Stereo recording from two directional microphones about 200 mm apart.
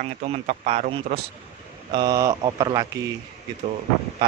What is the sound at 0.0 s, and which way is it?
Speech, 35° right (ahead or behind).